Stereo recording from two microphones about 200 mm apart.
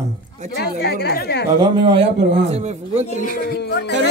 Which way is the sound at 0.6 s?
55° left (ahead or behind).